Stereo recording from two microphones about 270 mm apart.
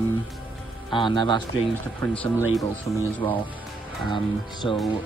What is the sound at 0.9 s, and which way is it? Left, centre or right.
Speech, centre.